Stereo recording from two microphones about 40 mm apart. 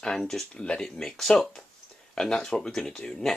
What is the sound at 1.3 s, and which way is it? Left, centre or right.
Speech, centre.